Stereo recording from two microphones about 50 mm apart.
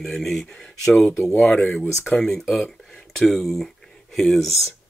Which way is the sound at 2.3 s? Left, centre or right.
Centre.